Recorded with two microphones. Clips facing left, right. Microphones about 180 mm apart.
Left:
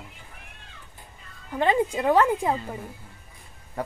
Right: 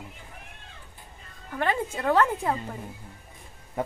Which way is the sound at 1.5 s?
15° left (ahead or behind).